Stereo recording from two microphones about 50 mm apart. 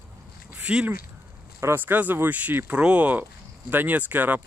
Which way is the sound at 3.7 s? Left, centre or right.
Right.